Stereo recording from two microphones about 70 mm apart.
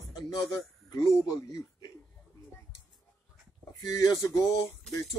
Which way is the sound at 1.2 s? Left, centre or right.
Left.